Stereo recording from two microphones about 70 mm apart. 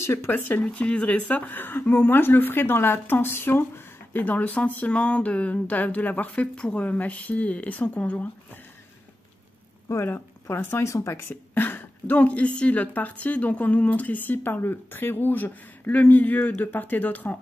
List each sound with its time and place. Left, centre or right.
0.0 s speech: left
0.3 s speech: left
9.8 s speech: left
11.2 s speech: left